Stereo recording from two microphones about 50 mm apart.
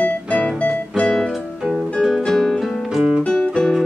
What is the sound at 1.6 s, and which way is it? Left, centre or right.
Music, centre.